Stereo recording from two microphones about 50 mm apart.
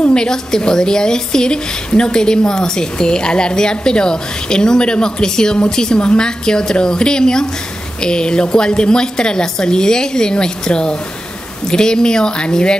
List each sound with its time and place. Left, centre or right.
0.1 s a woman's voice: centre